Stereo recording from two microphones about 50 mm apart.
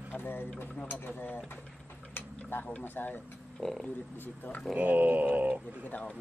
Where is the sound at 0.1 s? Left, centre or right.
Left.